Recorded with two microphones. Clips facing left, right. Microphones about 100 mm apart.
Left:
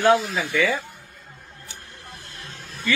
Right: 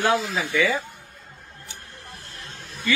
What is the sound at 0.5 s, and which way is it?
Speech, 15° right (ahead or behind).